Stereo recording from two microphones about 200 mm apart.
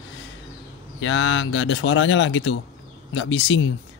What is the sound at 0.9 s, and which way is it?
Speech, 70° left (ahead or behind).